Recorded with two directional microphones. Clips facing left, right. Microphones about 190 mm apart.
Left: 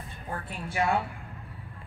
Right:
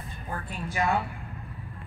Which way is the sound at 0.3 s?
30° left (ahead or behind).